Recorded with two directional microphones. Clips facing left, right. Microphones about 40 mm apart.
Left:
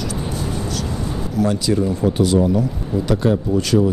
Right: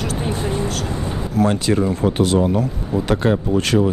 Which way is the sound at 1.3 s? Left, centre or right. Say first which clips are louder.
Right 1 dB; right.